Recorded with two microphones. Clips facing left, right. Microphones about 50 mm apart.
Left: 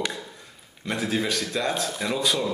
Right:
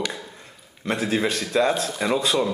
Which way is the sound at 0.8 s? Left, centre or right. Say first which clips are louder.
Right 3 dB; right.